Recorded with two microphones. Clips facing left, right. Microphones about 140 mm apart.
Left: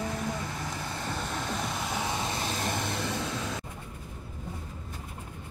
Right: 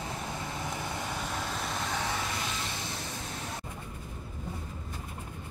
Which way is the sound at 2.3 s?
40° left (ahead or behind).